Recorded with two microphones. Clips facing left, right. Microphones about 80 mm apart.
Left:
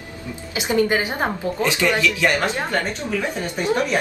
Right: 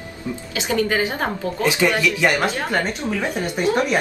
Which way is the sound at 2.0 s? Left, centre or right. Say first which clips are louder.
Right 1 dB; centre.